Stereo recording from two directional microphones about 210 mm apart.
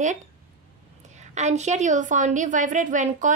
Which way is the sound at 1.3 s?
35° right (ahead or behind).